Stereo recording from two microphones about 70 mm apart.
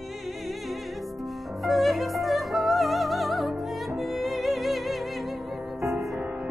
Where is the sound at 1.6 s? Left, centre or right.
Centre.